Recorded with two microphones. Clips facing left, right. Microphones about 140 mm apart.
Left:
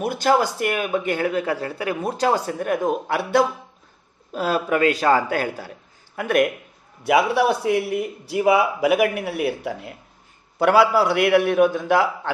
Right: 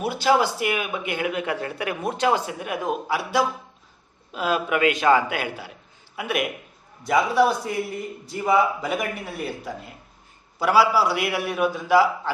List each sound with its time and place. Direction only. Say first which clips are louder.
0.0 s speech: left 1 dB; 50° left (ahead or behind)
4.3 s speech: left 2 dB; 40° left (ahead or behind)
7.1 s a man's voice: left 2 dB; 70° left (ahead or behind)
10.6 s a man's voice: left 3 dB; 55° left (ahead or behind)